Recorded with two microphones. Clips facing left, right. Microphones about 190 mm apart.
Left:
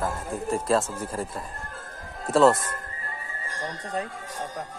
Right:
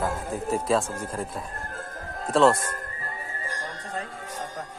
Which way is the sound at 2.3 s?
Centre (ahead or behind).